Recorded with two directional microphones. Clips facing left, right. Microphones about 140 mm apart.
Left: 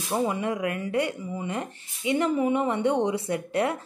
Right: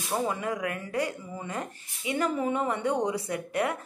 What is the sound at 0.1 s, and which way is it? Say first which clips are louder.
Speech: left 3 dB; 20° left (ahead or behind).